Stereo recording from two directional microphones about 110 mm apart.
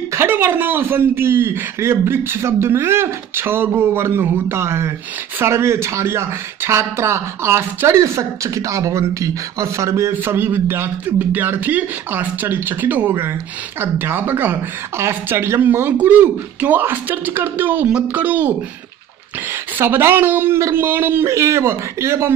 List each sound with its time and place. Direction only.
0.1 s speech: 20° right (ahead or behind)
19.8 s speech: 20° right (ahead or behind)